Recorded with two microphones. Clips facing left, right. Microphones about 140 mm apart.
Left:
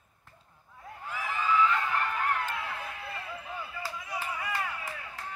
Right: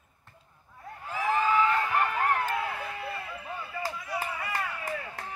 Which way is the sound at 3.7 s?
45° right (ahead or behind).